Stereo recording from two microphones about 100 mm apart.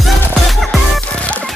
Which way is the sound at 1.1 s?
15° left (ahead or behind).